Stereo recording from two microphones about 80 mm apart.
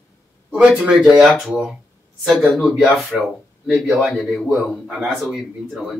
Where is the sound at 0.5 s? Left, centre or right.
Centre.